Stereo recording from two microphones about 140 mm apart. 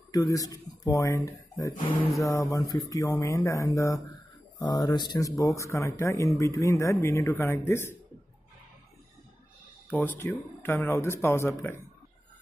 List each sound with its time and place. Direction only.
0.1 s speech: 25° left (ahead or behind)
9.8 s speech: 15° left (ahead or behind)